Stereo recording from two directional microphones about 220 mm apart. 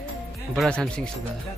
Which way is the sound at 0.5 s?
5° left (ahead or behind).